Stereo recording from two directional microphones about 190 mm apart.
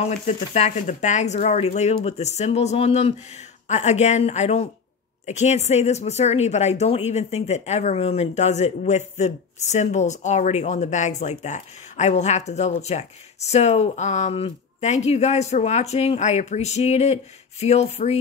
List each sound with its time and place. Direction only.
0.0 s speech: 35° left (ahead or behind)